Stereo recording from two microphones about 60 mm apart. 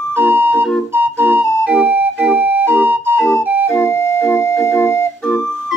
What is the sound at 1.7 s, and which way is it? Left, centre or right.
Music, right.